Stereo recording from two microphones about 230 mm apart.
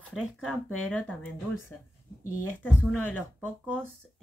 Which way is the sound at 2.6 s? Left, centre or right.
Centre.